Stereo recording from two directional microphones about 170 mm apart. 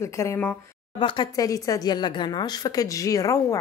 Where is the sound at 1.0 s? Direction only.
30° left (ahead or behind).